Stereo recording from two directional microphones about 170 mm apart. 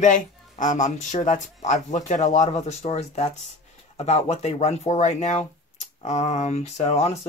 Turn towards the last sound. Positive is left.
turn(degrees=40)  # may be behind; listen again after turning